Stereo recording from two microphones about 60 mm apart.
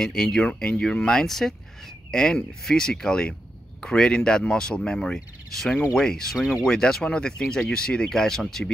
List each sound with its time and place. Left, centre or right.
0.0 s speech: centre
0.5 s speech: left
6.3 s speech: centre
6.6 s speech: centre